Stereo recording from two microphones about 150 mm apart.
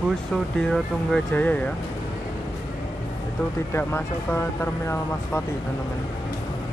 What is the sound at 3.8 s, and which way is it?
Speech, 15° left (ahead or behind).